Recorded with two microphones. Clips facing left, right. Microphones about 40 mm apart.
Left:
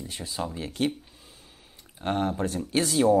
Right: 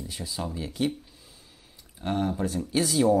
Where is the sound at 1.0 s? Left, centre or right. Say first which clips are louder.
Left 1 dB; left.